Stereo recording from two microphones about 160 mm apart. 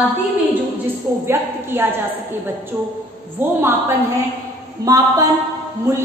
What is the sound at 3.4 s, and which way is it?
Speech, 15° right (ahead or behind).